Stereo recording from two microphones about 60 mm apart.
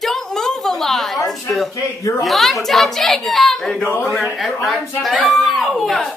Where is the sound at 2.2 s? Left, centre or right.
Centre.